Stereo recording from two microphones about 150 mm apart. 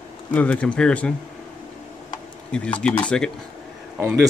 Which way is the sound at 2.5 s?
5° left (ahead or behind).